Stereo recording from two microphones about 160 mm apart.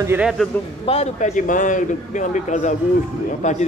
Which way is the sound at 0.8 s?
40° left (ahead or behind).